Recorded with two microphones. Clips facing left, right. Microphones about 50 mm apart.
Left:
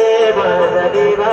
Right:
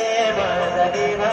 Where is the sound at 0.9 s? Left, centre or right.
Centre.